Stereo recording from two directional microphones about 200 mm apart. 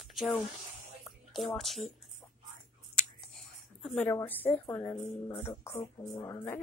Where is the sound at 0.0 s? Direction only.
Centre (ahead or behind).